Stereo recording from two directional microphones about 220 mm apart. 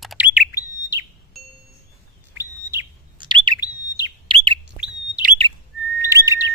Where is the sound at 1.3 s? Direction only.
Centre (ahead or behind).